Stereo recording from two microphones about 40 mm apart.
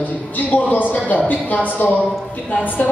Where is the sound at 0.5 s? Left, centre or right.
Left.